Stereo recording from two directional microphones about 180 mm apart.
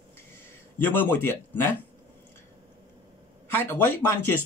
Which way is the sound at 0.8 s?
10° left (ahead or behind).